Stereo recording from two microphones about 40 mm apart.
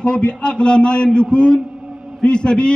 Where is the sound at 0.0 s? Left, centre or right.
Left.